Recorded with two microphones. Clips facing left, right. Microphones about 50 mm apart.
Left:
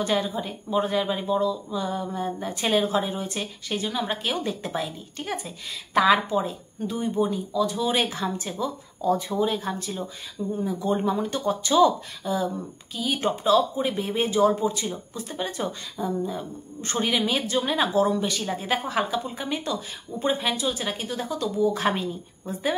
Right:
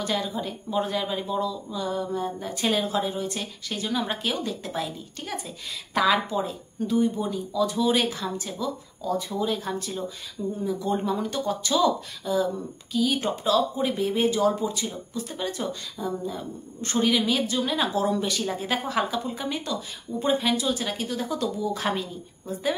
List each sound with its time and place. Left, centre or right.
0.0 s speech: centre
4.3 s speech: left
9.4 s speech: centre
10.6 s speech: left
17.9 s speech: centre